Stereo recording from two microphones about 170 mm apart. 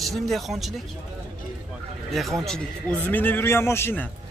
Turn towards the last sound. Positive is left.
turn(degrees=15)  # may be behind; listen again after turning